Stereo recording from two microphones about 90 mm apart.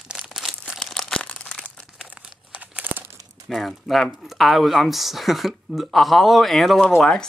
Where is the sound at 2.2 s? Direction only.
10° right (ahead or behind).